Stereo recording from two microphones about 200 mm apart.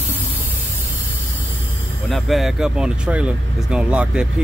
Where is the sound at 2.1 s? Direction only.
Centre (ahead or behind).